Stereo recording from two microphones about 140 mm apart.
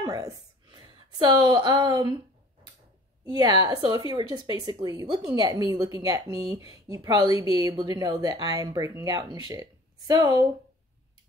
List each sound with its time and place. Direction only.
0.0 s speech: 25° right (ahead or behind)
3.3 s a woman's voice: 30° right (ahead or behind)
7.3 s speech: 35° left (ahead or behind)
7.7 s a woman's voice: 30° right (ahead or behind)